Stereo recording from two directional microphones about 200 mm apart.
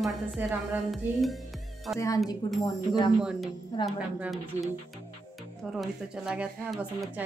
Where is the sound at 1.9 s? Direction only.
15° left (ahead or behind).